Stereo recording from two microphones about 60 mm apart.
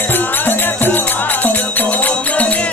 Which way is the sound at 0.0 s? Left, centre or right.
Left.